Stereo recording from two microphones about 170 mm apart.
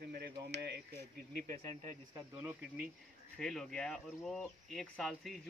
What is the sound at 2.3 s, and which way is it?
Speech, 10° right (ahead or behind).